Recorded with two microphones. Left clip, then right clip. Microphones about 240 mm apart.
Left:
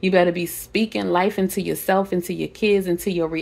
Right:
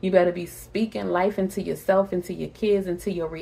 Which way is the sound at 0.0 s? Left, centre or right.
Left.